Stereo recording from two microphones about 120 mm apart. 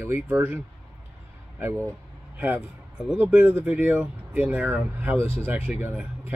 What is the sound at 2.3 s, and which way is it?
Speech, 15° right (ahead or behind).